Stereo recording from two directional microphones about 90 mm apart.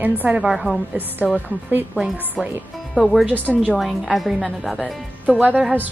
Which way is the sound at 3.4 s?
15° right (ahead or behind).